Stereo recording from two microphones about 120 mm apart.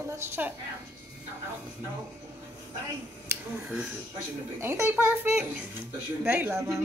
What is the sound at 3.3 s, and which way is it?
Speech, 10° right (ahead or behind).